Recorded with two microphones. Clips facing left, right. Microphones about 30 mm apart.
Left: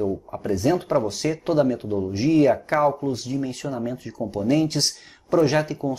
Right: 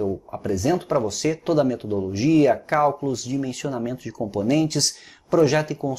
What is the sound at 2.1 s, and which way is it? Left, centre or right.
Speech, centre.